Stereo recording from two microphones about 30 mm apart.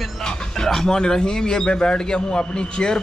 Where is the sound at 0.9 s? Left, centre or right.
Left.